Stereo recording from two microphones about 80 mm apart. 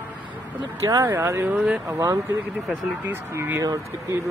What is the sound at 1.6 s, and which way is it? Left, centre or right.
Speech, centre.